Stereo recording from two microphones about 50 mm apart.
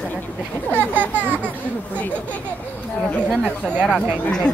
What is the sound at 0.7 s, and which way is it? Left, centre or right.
Speech, right.